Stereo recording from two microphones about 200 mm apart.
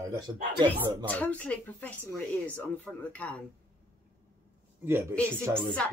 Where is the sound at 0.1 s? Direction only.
15° right (ahead or behind).